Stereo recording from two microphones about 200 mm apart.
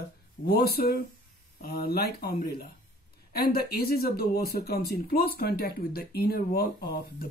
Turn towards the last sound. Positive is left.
turn(degrees=50)  # may be behind; listen again after turning